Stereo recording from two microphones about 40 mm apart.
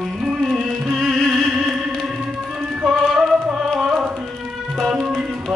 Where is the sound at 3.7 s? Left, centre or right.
Centre.